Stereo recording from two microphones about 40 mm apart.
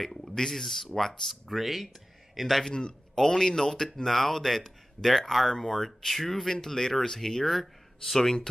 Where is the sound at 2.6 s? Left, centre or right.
Centre.